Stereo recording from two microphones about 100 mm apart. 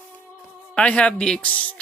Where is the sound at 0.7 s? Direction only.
15° left (ahead or behind).